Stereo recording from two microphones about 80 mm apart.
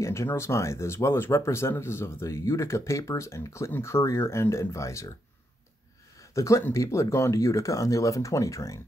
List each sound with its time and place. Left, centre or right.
0.0 s speech: left
6.3 s speech: left